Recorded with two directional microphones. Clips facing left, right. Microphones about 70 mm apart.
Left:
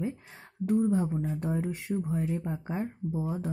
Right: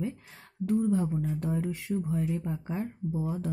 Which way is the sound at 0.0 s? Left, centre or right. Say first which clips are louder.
Left 1 dB; left.